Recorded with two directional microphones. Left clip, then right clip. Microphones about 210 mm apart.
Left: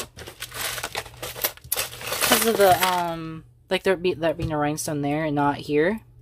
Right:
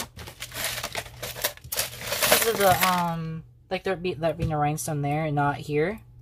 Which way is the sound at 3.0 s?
45° left (ahead or behind).